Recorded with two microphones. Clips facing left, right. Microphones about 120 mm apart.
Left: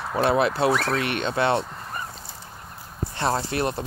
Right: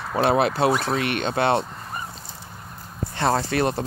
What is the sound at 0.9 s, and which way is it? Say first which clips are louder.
Mantra: right 1 dB; 25° left (ahead or behind).